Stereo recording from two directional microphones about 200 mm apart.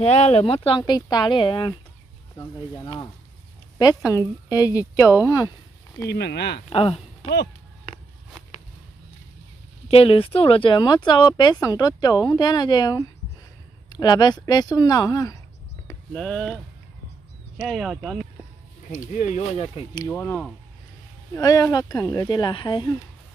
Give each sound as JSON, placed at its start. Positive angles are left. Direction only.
{"t": 0.0, "sound": "speech", "side_deg": 30}
{"t": 6.0, "sound": "speech", "side_deg": 55}
{"t": 6.7, "sound": "speech", "side_deg": 25}
{"t": 9.8, "sound": "speech", "side_deg": 30}
{"t": 16.1, "sound": "speech", "side_deg": 0}
{"t": 17.6, "sound": "speech", "side_deg": 0}
{"t": 18.9, "sound": "speech", "side_deg": 40}
{"t": 19.6, "sound": "speech", "side_deg": 25}
{"t": 20.1, "sound": "speech", "side_deg": 10}